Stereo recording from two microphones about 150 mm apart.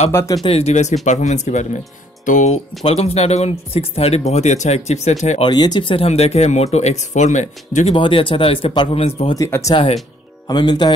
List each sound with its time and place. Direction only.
0.1 s speech: 20° left (ahead or behind)
0.5 s speech: 45° left (ahead or behind)
5.4 s speech: 30° left (ahead or behind); by 7.9 s 50° left (ahead or behind)
7.9 s speech: 35° left (ahead or behind)
9.4 s speech: 20° left (ahead or behind)